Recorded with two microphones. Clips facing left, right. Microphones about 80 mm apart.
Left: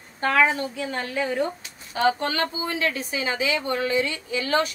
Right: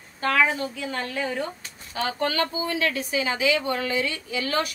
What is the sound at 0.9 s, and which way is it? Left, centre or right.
A woman's voice, left.